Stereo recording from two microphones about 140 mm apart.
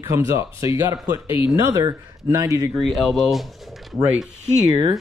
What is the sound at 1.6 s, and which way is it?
Speech, 20° right (ahead or behind).